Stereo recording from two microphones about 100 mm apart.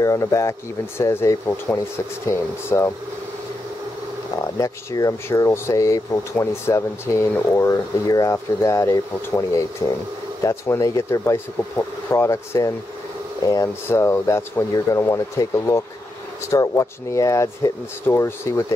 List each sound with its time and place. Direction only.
0.0 s speech: 35° left (ahead or behind)
4.6 s speech: 35° left (ahead or behind)